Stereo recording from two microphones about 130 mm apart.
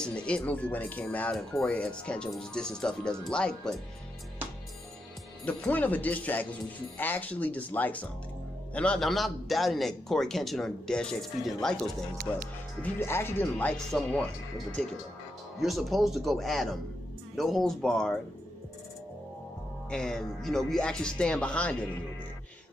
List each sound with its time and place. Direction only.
0.0 s speech: 10° left (ahead or behind)
5.4 s a man's voice: 10° left (ahead or behind)
12.3 s speech: 15° left (ahead or behind)
15.6 s a man's voice: centre (ahead or behind)
19.9 s a man's voice: 5° left (ahead or behind)